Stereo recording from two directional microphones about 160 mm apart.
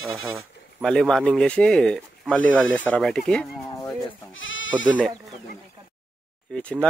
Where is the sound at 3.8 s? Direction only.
20° left (ahead or behind).